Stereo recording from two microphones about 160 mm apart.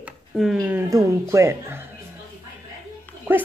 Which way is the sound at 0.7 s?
15° right (ahead or behind).